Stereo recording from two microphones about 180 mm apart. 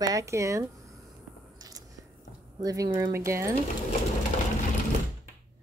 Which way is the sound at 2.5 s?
20° right (ahead or behind).